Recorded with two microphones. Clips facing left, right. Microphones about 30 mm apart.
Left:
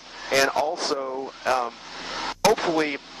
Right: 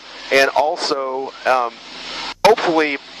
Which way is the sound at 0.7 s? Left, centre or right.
Right.